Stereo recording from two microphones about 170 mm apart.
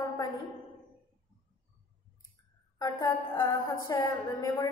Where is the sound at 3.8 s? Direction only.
20° left (ahead or behind).